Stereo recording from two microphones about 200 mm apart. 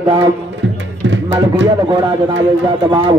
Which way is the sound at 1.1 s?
65° right (ahead or behind).